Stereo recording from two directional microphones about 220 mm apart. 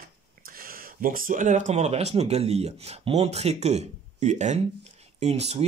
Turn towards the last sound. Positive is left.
turn(degrees=-30)  # may be behind; listen again after turning